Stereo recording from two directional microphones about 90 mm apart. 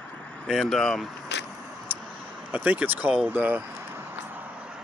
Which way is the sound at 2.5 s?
15° right (ahead or behind).